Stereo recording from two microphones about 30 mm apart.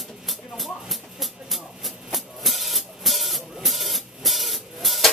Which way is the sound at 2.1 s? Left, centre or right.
Centre.